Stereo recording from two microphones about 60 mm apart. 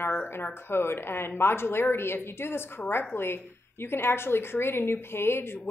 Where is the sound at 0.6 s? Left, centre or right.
Left.